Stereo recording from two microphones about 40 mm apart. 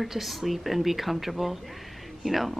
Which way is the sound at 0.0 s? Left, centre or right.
Centre.